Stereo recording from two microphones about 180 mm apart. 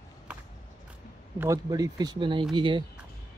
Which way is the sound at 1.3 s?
15° right (ahead or behind).